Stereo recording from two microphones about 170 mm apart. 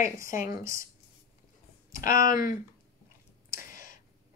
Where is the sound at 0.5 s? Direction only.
15° right (ahead or behind).